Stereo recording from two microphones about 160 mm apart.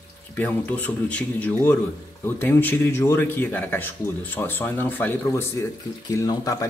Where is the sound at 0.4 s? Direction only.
10° left (ahead or behind).